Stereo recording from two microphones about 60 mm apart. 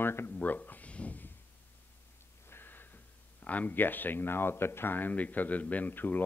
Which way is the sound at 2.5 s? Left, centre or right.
Left.